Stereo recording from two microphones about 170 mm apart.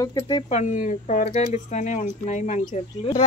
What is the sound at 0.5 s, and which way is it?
Speech, 45° left (ahead or behind).